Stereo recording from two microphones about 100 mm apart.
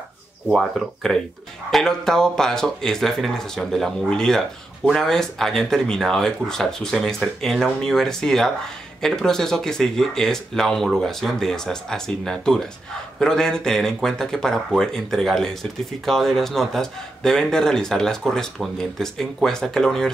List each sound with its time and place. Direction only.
0.5 s speech: 5° right (ahead or behind)